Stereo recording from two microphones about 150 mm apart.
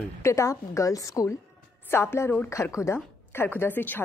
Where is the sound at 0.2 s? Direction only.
20° left (ahead or behind).